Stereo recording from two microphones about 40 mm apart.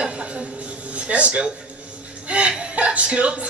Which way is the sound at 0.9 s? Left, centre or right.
Right.